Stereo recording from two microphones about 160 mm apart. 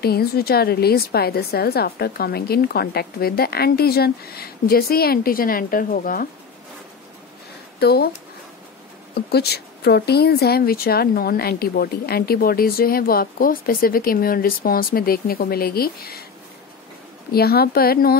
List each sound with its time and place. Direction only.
0.0 s speech: 75° left (ahead or behind)
7.8 s speech: 80° left
9.1 s speech: 90° left; by 16.3 s 70° left (ahead or behind)
17.3 s speech: 75° left (ahead or behind)